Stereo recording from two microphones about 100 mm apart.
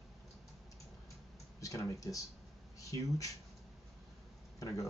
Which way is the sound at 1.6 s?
35° left (ahead or behind).